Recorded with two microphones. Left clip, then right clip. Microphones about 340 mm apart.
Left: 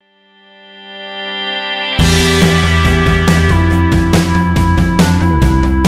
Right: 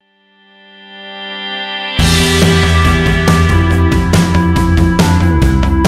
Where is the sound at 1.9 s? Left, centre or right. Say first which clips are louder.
Right 1 dB; centre.